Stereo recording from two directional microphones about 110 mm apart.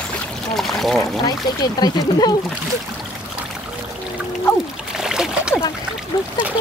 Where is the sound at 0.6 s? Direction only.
Centre (ahead or behind).